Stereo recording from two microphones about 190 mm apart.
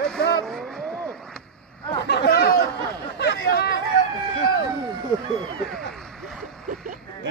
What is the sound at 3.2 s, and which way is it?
Chatter, 60° left (ahead or behind).